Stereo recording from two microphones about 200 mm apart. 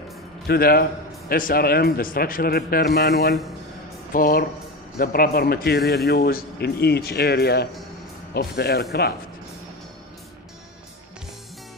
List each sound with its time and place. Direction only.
0.5 s speech: 50° left (ahead or behind)